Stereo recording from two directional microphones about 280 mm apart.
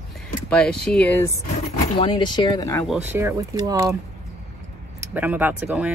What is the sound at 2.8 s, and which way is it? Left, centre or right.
Speech, centre.